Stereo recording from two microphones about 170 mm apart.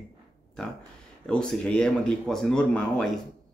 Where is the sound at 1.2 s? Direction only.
5° left (ahead or behind).